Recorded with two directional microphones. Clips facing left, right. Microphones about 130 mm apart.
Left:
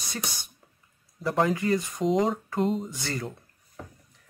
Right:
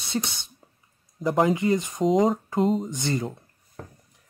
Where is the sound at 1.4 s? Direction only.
20° right (ahead or behind).